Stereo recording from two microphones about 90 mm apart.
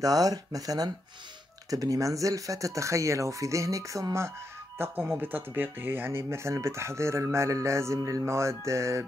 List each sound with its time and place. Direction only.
0.0 s speech: 40° right (ahead or behind)